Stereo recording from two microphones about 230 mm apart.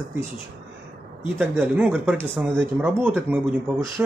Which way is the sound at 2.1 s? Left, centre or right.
Centre.